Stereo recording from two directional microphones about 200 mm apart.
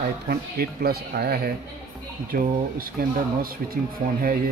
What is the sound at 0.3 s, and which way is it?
Speech, 50° right (ahead or behind).